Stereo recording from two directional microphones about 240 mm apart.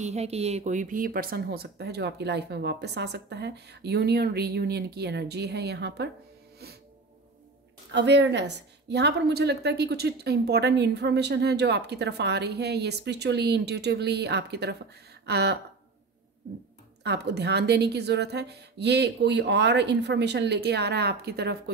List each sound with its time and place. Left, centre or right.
0.0 s a woman's voice: right
6.6 s music: right
7.9 s a woman's voice: right
17.0 s a woman's voice: right